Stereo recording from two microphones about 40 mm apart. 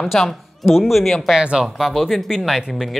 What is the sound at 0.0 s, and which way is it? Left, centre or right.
Speech, centre.